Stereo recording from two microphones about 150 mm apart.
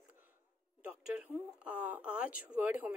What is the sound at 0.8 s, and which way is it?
Speech, 10° right (ahead or behind).